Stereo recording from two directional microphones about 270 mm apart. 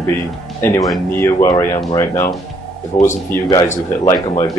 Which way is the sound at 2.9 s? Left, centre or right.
Left.